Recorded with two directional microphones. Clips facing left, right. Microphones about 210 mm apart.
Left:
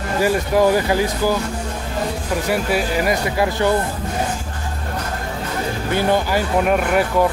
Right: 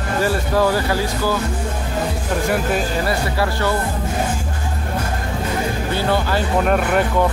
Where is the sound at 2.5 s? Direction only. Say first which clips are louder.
Left 2 dB; 10° left (ahead or behind).